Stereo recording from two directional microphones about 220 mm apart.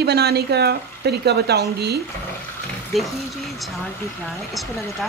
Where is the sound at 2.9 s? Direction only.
Centre (ahead or behind).